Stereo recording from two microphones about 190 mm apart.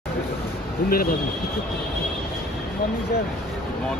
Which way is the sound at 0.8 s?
50° left (ahead or behind).